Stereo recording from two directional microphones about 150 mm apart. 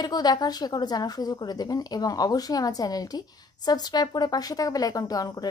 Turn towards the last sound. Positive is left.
turn(degrees=25)  # may be behind; listen again after turning